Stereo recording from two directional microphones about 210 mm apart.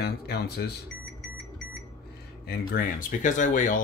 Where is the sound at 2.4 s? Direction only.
45° left (ahead or behind).